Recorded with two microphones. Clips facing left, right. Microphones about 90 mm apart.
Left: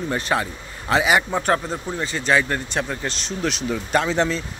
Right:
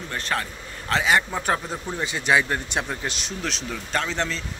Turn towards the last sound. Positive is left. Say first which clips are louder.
# left 6 dB
turn(degrees=10)  # may be behind; listen again after turning